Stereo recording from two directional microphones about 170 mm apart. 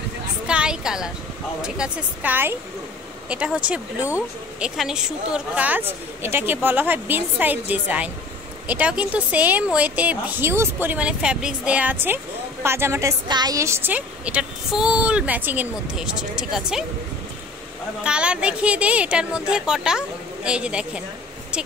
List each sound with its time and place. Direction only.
0.5 s a sound: 5° right (ahead or behind)
1.6 s speech: 5° right (ahead or behind)
18.0 s speech: 5° right (ahead or behind)